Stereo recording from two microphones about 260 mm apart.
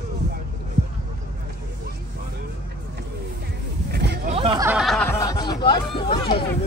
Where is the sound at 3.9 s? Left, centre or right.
Right.